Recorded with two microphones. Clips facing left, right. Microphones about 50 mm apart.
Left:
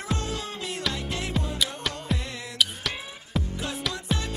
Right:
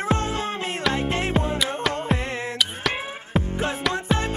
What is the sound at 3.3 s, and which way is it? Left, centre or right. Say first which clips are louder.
Music: right 6 dB; right.